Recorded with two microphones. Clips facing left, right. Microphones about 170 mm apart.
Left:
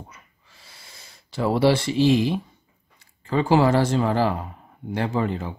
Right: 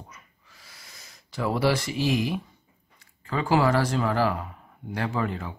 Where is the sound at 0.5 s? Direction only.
30° left (ahead or behind).